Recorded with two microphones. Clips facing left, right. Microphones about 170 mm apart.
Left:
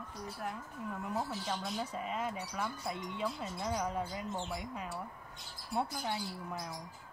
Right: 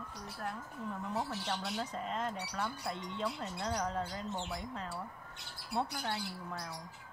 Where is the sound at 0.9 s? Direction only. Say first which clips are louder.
Even; centre (ahead or behind).